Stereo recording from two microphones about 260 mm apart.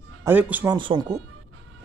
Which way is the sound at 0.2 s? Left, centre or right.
Centre.